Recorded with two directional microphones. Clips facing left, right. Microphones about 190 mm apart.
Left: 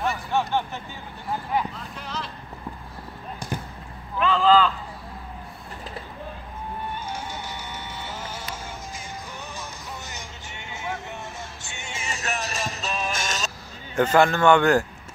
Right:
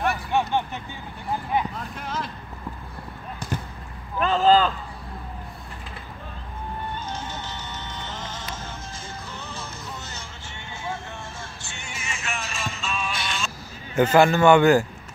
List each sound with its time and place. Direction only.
0.3 s a sound: 15° right (ahead or behind)
1.8 s a sound: 50° right (ahead or behind)
3.3 s basketball bounce: 15° left (ahead or behind)
4.2 s vehicle: 40° right (ahead or behind)
7.1 s music: 10° left (ahead or behind)
9.5 s music: 15° left (ahead or behind)
11.6 s music: 20° left (ahead or behind)
12.0 s music: 40° left (ahead or behind)
13.9 s a man's voice: 5° right (ahead or behind)